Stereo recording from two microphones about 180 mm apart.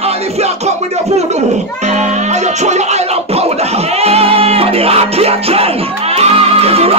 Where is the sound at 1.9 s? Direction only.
40° right (ahead or behind).